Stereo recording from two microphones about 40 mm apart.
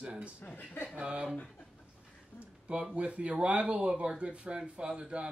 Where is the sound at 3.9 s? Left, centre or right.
Centre.